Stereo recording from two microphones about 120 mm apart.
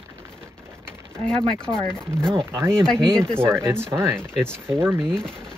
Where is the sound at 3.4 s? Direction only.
20° right (ahead or behind).